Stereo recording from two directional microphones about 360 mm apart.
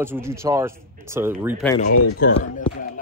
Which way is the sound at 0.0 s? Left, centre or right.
Centre.